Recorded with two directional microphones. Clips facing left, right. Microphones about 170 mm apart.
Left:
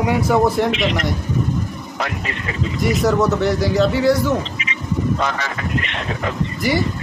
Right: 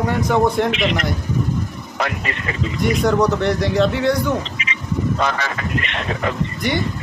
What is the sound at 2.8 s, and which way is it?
Speech, centre (ahead or behind).